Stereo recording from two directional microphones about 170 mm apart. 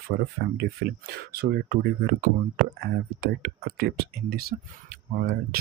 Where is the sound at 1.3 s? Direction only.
65° right (ahead or behind).